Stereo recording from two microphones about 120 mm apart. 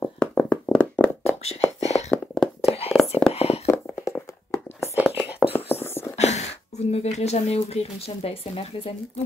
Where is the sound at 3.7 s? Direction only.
25° left (ahead or behind).